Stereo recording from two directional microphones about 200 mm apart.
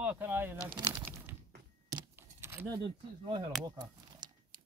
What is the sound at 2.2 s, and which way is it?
Keys jangling, 10° right (ahead or behind).